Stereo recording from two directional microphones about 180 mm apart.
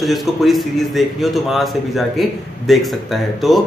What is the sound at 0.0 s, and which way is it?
A man's voice, centre (ahead or behind).